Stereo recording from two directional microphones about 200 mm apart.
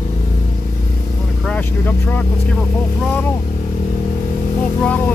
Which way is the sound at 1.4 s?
5° left (ahead or behind).